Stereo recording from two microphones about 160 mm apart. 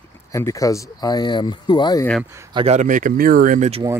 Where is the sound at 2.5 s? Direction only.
35° right (ahead or behind).